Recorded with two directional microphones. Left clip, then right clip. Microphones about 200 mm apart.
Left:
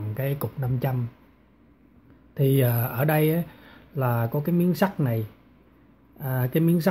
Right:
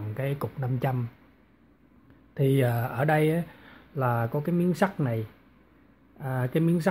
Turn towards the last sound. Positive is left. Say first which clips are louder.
# left 2 dB
turn(degrees=0)  # may be behind; listen again after turning